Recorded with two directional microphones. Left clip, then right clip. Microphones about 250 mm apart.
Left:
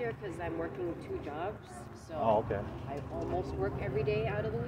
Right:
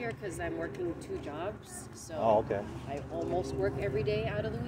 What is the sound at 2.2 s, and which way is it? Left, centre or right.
Speech, centre.